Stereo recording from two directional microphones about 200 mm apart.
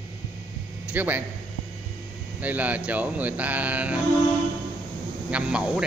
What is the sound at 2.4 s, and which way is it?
Speech, 10° right (ahead or behind).